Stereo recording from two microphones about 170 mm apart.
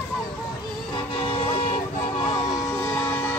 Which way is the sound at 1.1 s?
35° left (ahead or behind).